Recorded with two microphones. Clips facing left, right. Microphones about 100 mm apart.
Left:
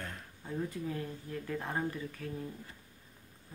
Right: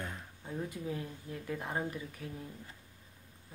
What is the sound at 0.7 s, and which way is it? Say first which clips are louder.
Speech: left 1 dB; 10° right (ahead or behind).